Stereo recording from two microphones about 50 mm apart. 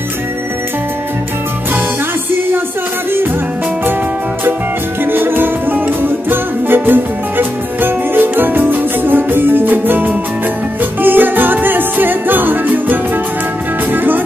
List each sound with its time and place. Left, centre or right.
5.0 s music: right